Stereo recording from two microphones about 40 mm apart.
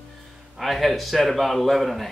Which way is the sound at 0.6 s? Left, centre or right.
Centre.